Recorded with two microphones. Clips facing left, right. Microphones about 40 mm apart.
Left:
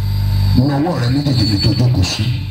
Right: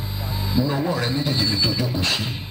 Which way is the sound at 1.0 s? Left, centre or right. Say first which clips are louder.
Left 6 dB; right.